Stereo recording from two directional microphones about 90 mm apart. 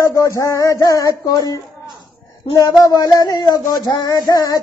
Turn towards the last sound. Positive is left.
turn(degrees=45)  # may be behind; listen again after turning